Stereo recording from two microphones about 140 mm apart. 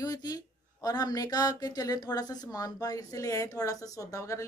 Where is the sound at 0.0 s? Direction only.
25° left (ahead or behind).